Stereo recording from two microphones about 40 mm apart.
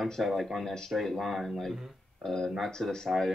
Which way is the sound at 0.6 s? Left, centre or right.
Centre.